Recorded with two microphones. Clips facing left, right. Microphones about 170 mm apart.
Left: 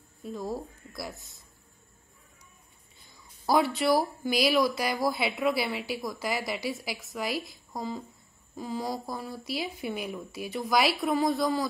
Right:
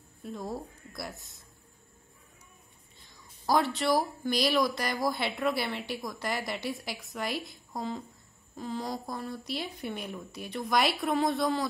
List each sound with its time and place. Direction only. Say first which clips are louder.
0.2 s speech: left 3 dB; centre (ahead or behind)
3.4 s speech: left 2 dB; 10° left (ahead or behind)